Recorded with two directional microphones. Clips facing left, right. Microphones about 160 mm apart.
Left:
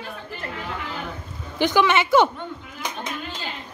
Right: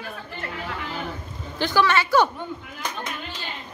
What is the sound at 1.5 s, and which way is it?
Speech, 15° left (ahead or behind).